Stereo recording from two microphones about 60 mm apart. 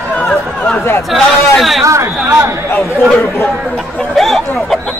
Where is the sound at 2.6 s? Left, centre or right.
Left.